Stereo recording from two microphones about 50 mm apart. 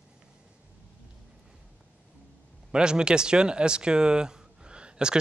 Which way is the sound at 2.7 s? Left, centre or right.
Centre.